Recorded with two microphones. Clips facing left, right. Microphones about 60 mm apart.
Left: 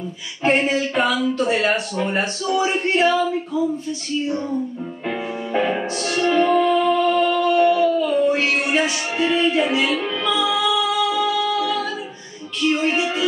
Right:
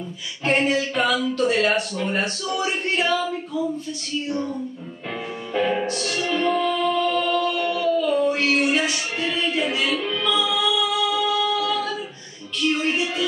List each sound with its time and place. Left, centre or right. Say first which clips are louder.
0.4 s speech: left 2 dB; centre
5.5 s music: left 1 dB; centre